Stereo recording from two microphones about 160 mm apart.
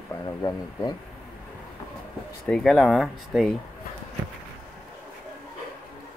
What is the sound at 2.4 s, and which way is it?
Speech, 5° left (ahead or behind).